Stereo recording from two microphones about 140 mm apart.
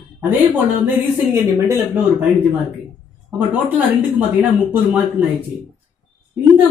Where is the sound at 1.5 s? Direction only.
15° right (ahead or behind).